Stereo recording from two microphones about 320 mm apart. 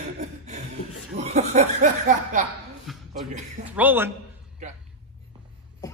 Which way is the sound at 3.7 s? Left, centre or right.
Centre.